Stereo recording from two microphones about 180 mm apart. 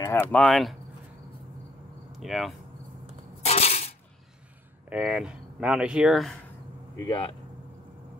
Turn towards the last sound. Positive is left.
turn(degrees=30)  # may be behind; listen again after turning